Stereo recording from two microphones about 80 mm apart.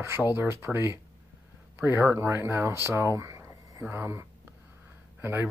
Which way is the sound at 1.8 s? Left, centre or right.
Right.